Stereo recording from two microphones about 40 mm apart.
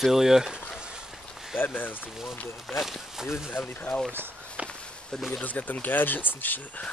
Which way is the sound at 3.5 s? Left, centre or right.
Left.